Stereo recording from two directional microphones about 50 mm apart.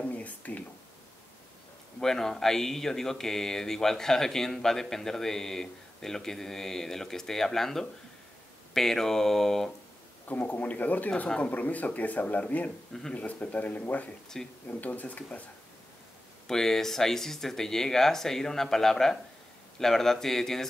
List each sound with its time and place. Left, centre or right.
0.1 s a sound: left
2.0 s speech: centre
10.2 s speech: left
14.3 s speech: centre
14.7 s speech: left
16.4 s speech: centre